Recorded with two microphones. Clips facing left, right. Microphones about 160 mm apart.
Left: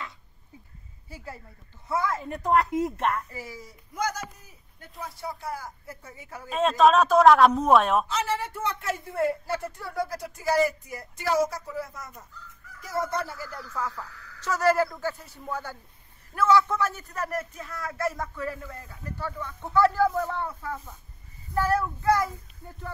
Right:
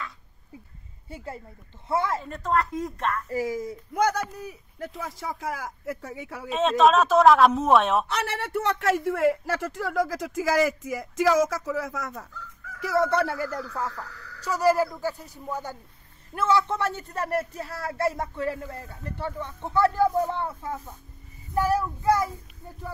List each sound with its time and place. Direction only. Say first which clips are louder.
1.0 s speech: right 4 dB; 25° right (ahead or behind)
2.2 s speech: left 2 dB; 15° left (ahead or behind)
3.3 s a man's voice: right 13 dB; 45° right (ahead or behind); by 6.5 s 70° right (ahead or behind)
6.5 s speech: even; centre (ahead or behind)
8.1 s a man's voice: even; 65° right (ahead or behind)
13.7 s speech: right 1 dB; 30° right (ahead or behind)
14.5 s speech: right 1 dB; 10° right (ahead or behind)
21.5 s speech: right 1 dB; 15° right (ahead or behind)